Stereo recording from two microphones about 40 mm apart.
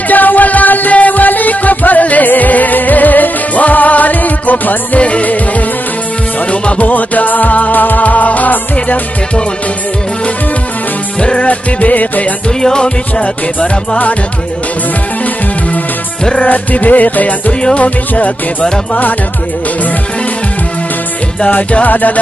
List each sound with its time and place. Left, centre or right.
0.1 s music: left
6.5 s music: left
11.1 s music: left
11.4 s music: left
12.6 s music: left
16.3 s music: left
21.8 s music: left